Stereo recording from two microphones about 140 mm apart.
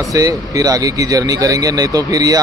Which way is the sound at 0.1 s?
25° right (ahead or behind).